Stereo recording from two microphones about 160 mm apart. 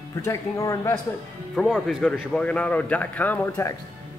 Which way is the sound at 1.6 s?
Centre (ahead or behind).